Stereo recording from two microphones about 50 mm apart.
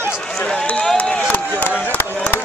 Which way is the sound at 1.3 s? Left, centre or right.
Left.